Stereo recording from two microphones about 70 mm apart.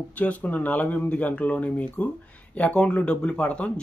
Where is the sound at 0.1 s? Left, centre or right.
Left.